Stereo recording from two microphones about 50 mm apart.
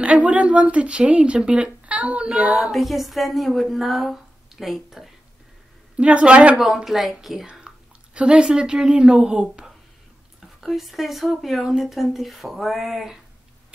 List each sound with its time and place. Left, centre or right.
0.0 s speech: right
2.7 s a woman's voice: centre
5.9 s a woman's voice: right
6.6 s a woman's voice: centre
7.6 s speech: right
10.6 s a woman's voice: centre